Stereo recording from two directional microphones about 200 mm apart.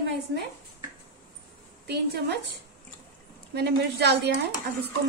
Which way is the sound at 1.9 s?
55° right (ahead or behind).